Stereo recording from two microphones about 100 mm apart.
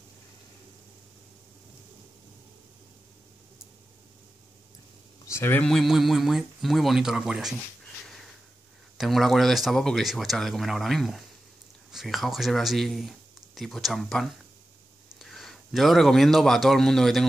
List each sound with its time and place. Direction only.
5.2 s speech: 25° left (ahead or behind)
5.6 s speech: 5° left (ahead or behind)
8.9 s a man's voice: centre (ahead or behind)